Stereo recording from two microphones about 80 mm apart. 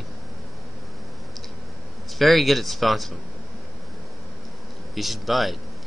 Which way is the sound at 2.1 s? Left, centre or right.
Centre.